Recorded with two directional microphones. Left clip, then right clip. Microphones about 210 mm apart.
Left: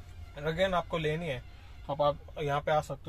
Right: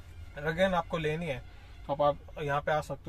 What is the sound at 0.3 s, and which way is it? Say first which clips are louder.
Speech: right 1 dB; centre (ahead or behind).